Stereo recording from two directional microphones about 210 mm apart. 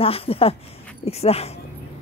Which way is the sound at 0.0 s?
25° left (ahead or behind).